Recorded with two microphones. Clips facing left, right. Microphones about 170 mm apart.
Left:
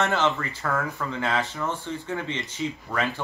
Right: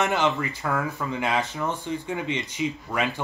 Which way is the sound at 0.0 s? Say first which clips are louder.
Right 1 dB; 15° right (ahead or behind).